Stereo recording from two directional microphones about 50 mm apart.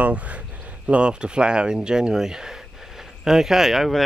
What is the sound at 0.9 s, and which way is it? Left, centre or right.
Speech, right.